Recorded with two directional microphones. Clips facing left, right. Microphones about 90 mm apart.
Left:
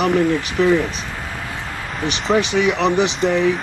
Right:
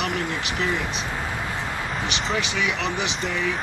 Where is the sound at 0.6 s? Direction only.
45° left (ahead or behind).